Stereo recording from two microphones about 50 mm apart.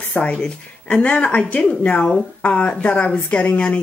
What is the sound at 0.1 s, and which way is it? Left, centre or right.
Speech, left.